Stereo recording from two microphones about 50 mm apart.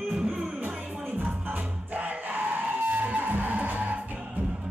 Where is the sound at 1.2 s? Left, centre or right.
Right.